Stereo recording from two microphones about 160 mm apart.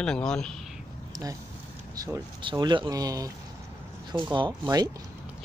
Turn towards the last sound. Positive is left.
turn(degrees=-25)  # may be behind; listen again after turning